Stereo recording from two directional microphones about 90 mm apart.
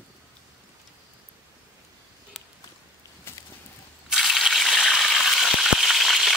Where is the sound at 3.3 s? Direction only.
25° left (ahead or behind).